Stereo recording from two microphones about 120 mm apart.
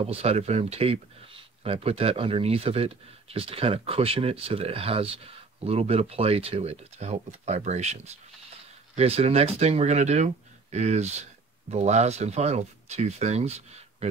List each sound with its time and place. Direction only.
0.0 s speech: 55° right (ahead or behind)
8.9 s speech: 55° right (ahead or behind)